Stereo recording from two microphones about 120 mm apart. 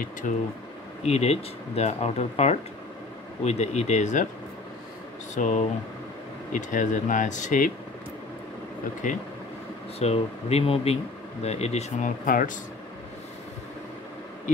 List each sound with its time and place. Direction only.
0.2 s speech: 90° left
1.0 s speech: 60° left (ahead or behind); by 4.3 s 85° left
5.3 s speech: 90° left
9.0 s speech: 90° left
9.9 s speech: 60° left (ahead or behind); by 12.5 s 80° left